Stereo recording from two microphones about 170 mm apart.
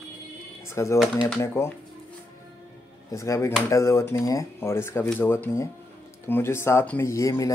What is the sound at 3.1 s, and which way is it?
Speech, 20° left (ahead or behind).